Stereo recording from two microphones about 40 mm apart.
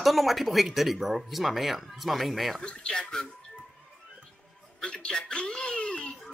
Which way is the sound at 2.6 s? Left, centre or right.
Left.